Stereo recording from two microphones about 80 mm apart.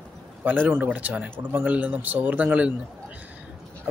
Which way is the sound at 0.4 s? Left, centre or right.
Right.